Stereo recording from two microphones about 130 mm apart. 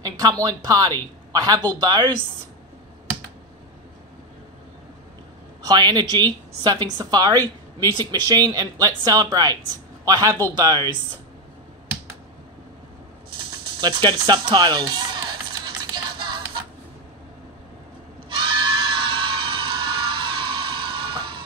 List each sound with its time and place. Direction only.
0.0 s a woman's voice: 30° right (ahead or behind)
5.7 s a woman's voice: 30° right (ahead or behind)
13.3 s music: 35° right (ahead or behind)
18.3 s music: 40° right (ahead or behind)